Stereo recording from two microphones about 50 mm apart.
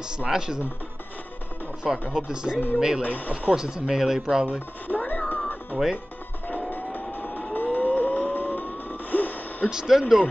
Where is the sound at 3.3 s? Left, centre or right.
Centre.